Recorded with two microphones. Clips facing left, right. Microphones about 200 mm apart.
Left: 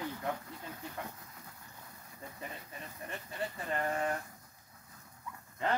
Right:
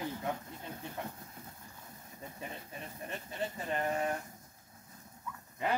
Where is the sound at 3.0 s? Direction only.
20° right (ahead or behind).